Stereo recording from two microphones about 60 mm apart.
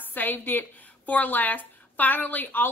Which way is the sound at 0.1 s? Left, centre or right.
Left.